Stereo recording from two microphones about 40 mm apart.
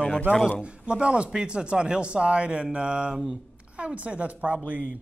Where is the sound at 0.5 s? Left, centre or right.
Right.